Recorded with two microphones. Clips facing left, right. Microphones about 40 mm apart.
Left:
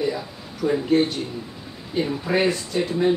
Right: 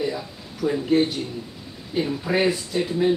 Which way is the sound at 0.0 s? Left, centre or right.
Centre.